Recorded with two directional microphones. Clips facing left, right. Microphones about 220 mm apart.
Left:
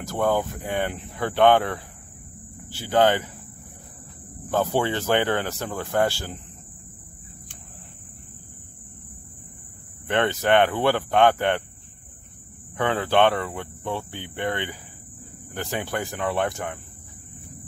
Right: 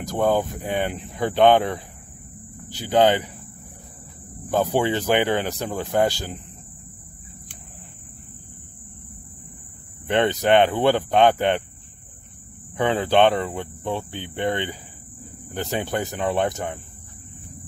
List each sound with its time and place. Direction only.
0.0 s speech: 15° right (ahead or behind)
4.5 s speech: 15° right (ahead or behind)
10.0 s speech: 15° right (ahead or behind)
12.7 s speech: 20° right (ahead or behind)